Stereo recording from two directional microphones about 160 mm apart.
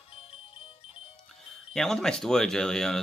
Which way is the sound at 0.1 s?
35° left (ahead or behind).